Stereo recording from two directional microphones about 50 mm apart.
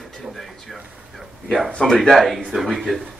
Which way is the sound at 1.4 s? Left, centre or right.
Centre.